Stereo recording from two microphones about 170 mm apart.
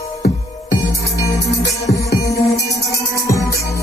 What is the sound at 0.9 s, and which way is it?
Music, 20° left (ahead or behind).